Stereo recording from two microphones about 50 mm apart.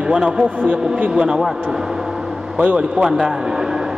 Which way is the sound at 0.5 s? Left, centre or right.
Right.